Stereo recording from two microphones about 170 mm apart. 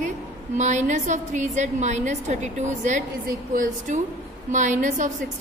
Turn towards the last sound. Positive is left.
turn(degrees=-45)  # may be behind; listen again after turning